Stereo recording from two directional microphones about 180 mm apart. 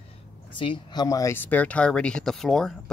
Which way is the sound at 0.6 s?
25° left (ahead or behind).